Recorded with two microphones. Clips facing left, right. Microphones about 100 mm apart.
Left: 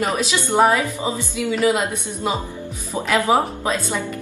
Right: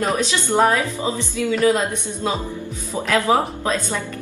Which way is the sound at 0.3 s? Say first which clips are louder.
Left 2 dB; 15° left (ahead or behind).